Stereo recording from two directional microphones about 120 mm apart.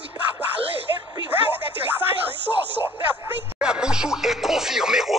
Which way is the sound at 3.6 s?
5° right (ahead or behind).